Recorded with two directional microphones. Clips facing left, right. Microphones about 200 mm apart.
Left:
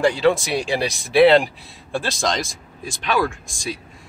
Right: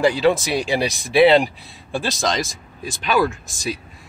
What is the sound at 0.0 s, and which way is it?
Speech, centre (ahead or behind).